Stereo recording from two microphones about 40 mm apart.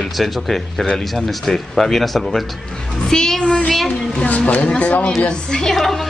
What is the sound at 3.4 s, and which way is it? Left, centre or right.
Child singing, left.